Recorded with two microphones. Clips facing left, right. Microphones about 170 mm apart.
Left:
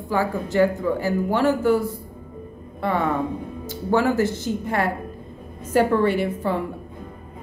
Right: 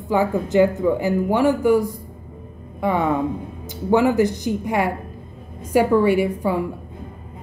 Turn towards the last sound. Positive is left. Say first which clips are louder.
# right 4 dB
turn(degrees=-10)  # may be behind; listen again after turning